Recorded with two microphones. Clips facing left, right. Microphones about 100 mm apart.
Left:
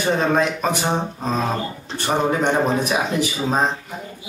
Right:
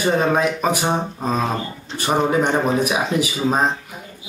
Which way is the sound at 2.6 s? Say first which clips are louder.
Right 1 dB; 5° right (ahead or behind).